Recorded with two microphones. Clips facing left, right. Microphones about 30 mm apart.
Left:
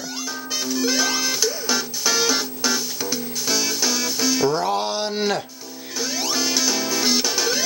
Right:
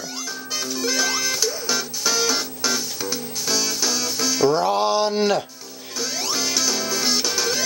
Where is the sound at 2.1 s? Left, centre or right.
Centre.